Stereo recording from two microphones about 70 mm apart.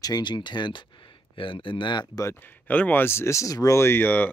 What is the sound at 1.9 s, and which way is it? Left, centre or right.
Speech, left.